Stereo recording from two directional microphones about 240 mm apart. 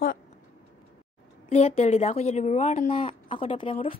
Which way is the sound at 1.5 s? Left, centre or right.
Left.